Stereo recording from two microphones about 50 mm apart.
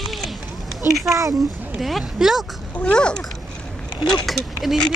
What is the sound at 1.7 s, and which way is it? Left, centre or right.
Speech, centre.